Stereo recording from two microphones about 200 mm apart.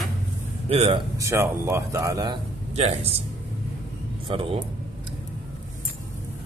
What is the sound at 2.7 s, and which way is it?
Speech, 30° right (ahead or behind).